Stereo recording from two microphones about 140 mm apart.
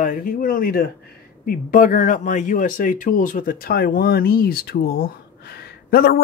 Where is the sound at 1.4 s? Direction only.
75° left (ahead or behind).